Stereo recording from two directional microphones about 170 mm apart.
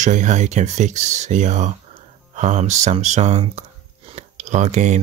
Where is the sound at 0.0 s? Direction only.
45° right (ahead or behind).